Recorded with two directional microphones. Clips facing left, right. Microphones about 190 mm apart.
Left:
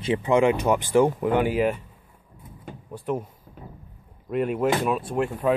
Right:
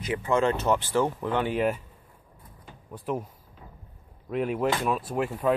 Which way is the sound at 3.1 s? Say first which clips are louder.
Left 3 dB; centre (ahead or behind).